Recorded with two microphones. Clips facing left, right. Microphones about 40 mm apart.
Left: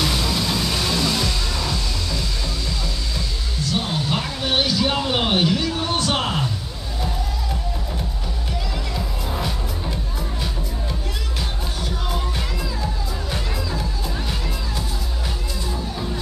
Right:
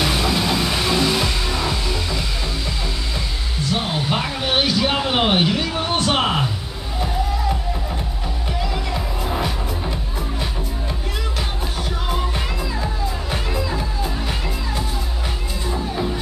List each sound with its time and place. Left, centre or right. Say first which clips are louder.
0.0 s music: right 3 dB; right
3.7 s a sound: right 2 dB; right
8.9 s music: right 3 dB; centre
13.3 s music: right 2 dB; right
15.6 s music: right 6 dB; right